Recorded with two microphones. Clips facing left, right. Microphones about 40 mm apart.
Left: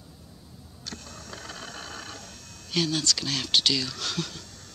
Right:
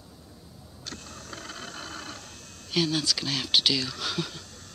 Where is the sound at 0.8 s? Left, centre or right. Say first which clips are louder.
Even; right.